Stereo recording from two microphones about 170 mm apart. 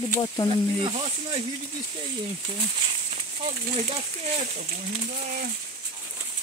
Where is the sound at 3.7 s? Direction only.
40° right (ahead or behind).